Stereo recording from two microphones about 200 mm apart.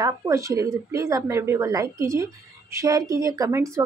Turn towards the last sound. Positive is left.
turn(degrees=-15)  # may be behind; listen again after turning